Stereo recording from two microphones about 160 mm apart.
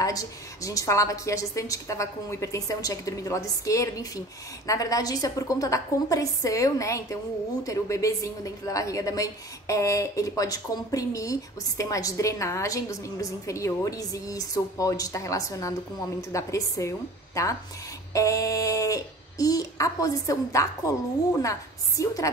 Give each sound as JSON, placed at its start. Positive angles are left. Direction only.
{"t": 0.0, "sound": "a woman's voice", "side_deg": 20}